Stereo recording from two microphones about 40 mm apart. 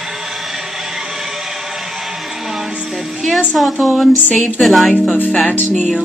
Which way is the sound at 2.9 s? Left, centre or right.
Centre.